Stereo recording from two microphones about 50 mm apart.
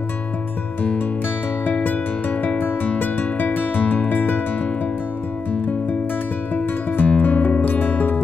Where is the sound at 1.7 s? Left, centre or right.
Left.